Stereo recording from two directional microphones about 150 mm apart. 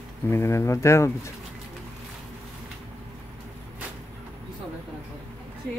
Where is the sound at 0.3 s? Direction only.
20° left (ahead or behind).